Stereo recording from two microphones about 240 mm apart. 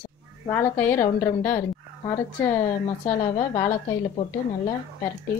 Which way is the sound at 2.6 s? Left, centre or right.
Left.